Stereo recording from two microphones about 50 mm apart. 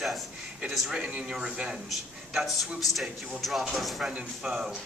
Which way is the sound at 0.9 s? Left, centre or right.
Right.